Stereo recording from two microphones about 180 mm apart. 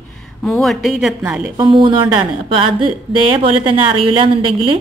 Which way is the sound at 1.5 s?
25° right (ahead or behind).